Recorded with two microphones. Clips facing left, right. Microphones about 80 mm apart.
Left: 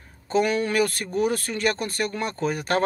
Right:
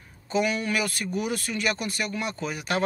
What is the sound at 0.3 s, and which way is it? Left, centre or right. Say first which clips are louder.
Speech: left 3 dB; left.